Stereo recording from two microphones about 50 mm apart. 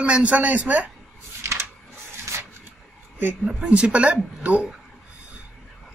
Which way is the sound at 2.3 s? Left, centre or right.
Right.